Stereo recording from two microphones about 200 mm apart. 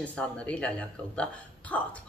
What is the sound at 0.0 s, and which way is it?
A woman's voice, 5° left (ahead or behind).